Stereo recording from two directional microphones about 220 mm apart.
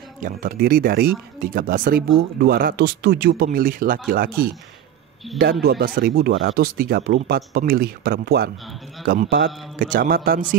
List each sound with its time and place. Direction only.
0.2 s speech: 40° right (ahead or behind)
5.4 s speech: 45° right (ahead or behind)